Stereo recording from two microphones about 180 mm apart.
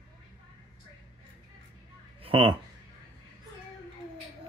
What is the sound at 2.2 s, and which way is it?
Speech, 30° right (ahead or behind).